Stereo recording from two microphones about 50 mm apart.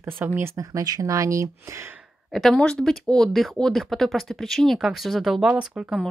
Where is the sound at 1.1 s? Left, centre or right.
Right.